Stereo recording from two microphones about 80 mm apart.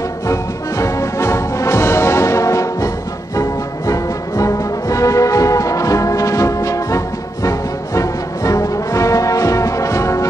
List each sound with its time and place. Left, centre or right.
0.3 s music: left